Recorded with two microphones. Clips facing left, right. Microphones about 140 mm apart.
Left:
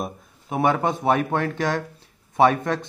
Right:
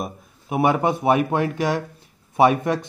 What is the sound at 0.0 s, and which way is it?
Speech, 10° right (ahead or behind).